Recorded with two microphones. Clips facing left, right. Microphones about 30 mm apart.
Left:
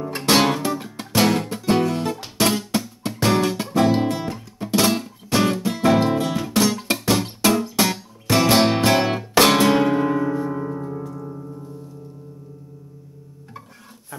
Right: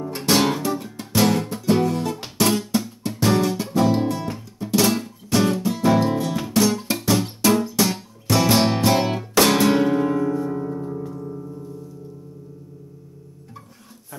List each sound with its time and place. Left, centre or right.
0.0 s music: left
4.7 s music: centre; by 6.3 s left
6.3 s music: centre
6.6 s music: centre